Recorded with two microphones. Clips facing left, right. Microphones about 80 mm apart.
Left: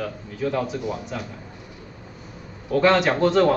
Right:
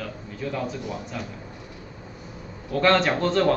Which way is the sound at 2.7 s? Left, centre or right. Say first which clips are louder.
Left 2 dB; centre.